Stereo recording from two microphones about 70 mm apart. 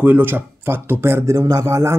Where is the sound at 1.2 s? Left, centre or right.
Right.